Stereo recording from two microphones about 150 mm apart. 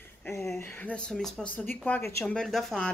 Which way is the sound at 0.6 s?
15° left (ahead or behind).